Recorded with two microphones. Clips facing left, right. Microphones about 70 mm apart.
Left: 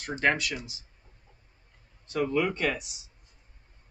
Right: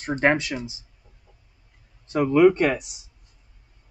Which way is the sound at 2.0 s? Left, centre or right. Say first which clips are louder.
Right 11 dB; right.